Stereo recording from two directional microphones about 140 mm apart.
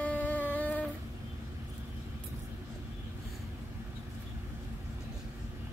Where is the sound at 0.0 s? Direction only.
10° left (ahead or behind).